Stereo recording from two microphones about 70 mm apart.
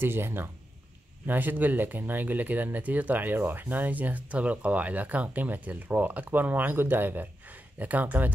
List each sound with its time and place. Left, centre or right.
0.0 s speech: right